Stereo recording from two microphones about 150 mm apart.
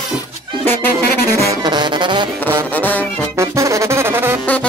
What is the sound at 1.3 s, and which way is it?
Music, 30° right (ahead or behind).